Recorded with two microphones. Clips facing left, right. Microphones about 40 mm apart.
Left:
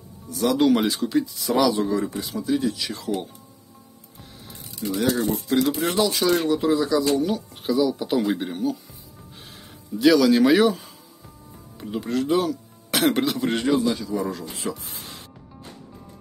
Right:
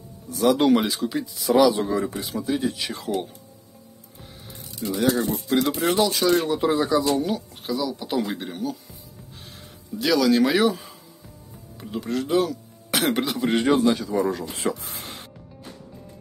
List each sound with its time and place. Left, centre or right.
0.7 s speech: centre; by 3.1 s right
4.5 s speech: centre
6.6 s speech: right
7.0 s speech: centre
9.9 s speech: centre
11.8 s speech: centre
13.7 s a man's voice: right